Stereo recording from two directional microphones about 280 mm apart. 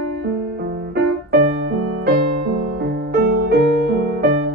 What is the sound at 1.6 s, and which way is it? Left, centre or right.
Music, right.